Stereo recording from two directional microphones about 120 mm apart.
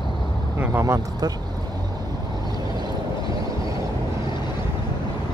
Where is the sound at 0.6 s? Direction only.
20° right (ahead or behind).